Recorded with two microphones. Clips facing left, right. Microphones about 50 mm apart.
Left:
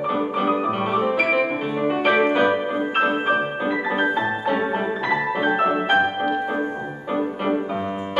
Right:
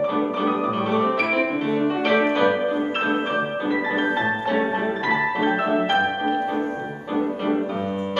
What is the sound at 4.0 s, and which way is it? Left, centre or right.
Music, centre.